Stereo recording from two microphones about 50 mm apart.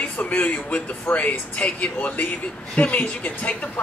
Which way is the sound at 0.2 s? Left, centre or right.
Left.